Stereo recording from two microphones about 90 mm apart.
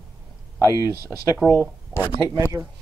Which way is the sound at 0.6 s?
35° right (ahead or behind).